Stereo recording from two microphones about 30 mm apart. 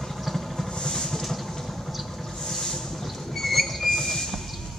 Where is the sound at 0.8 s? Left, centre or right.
Centre.